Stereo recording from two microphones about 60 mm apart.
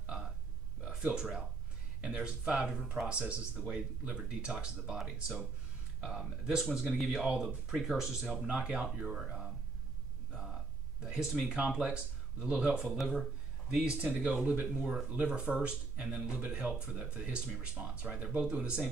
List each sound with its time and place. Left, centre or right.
1.1 s speech: centre
5.9 s speech: centre
6.4 s speech: centre
10.3 s a sound: centre
11.5 s speech: centre
12.9 s speech: centre
13.7 s speech: centre
14.7 s speech: centre
15.0 s speech: right
18.4 s speech: centre